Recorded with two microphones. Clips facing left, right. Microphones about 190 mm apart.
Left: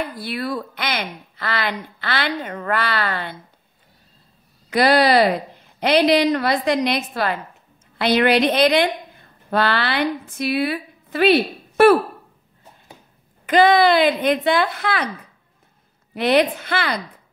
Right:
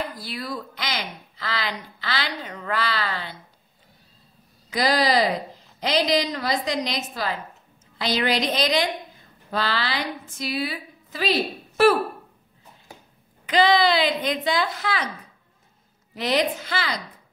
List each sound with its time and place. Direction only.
0.0 s a woman's voice: 60° left (ahead or behind)
4.6 s a woman's voice: 60° left (ahead or behind)
13.5 s a woman's voice: 50° left (ahead or behind)
16.2 s a woman's voice: 60° left (ahead or behind)